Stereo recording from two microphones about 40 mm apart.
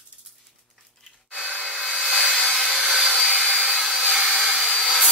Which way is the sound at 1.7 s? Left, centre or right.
Centre.